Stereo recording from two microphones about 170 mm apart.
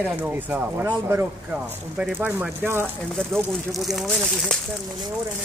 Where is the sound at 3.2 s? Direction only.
5° left (ahead or behind).